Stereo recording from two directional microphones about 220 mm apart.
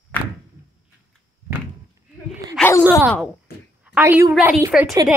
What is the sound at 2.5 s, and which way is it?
Groan, 10° left (ahead or behind).